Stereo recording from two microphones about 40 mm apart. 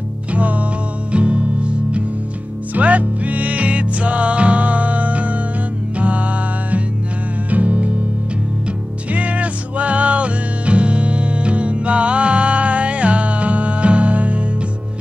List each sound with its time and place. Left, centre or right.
0.3 s music: right
9.1 s music: right